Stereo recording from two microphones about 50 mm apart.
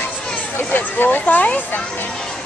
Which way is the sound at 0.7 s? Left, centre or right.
Left.